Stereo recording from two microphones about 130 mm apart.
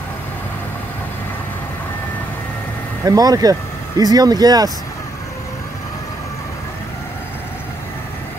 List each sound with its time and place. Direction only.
3.1 s speech: 30° right (ahead or behind)